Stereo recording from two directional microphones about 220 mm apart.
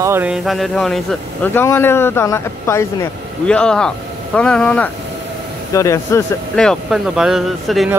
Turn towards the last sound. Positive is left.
turn(degrees=0)  # may be behind; listen again after turning